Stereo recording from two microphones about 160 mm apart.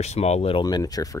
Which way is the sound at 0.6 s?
25° left (ahead or behind).